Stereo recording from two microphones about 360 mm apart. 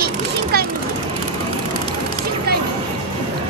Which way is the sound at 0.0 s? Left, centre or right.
Right.